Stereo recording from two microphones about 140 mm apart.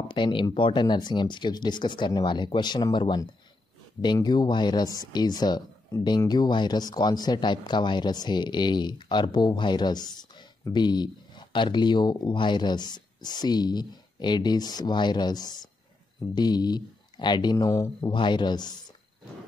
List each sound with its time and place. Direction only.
0.1 s speech: 35° left (ahead or behind)
18.1 s speech: 35° left (ahead or behind)